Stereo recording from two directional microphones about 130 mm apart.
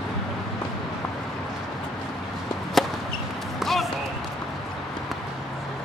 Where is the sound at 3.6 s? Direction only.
Centre (ahead or behind).